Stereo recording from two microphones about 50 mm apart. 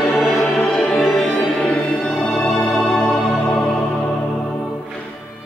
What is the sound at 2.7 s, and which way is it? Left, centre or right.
Music, centre.